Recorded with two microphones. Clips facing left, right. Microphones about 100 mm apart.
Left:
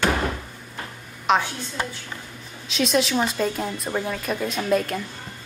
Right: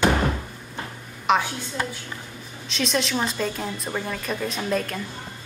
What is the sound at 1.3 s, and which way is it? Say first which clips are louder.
Speech: even; centre (ahead or behind).